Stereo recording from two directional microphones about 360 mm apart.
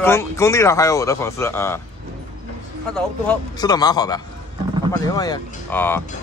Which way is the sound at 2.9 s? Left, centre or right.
Centre.